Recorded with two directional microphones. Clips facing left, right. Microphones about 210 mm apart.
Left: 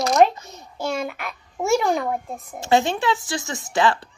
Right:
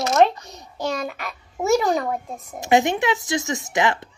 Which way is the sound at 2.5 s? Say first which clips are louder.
Right 1 dB; 15° right (ahead or behind).